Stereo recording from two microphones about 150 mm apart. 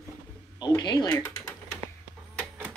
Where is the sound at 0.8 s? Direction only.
30° left (ahead or behind).